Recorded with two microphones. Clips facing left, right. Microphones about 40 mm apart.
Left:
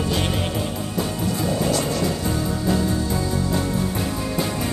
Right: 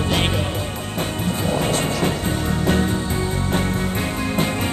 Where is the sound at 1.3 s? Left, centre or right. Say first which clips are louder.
Right 2 dB; right.